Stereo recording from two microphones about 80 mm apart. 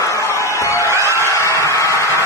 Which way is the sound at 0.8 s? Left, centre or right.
Right.